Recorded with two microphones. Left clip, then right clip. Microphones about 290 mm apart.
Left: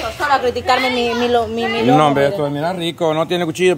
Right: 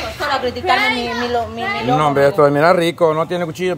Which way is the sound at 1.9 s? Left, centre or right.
Centre.